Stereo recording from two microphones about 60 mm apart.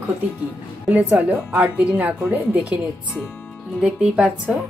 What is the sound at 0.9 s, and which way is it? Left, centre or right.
A woman's voice, right.